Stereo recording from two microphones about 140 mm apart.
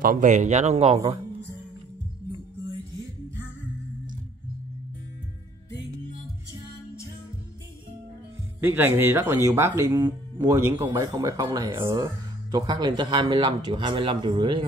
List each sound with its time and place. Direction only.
0.0 s a man's voice: 80° right; by 1.2 s 45° right (ahead or behind)
8.5 s speech: 15° right (ahead or behind); by 14.6 s 35° right (ahead or behind)